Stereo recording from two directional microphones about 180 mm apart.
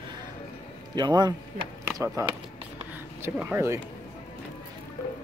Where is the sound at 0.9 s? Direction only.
25° right (ahead or behind).